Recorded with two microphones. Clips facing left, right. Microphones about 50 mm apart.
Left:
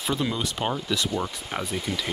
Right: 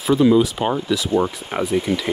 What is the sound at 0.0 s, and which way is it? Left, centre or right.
Speech, centre.